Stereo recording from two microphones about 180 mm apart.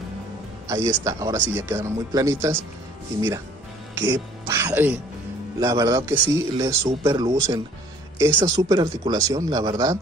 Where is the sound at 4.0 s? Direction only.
20° right (ahead or behind).